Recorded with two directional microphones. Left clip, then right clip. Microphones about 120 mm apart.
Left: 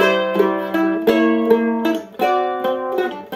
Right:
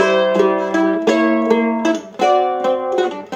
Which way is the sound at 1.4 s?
15° right (ahead or behind).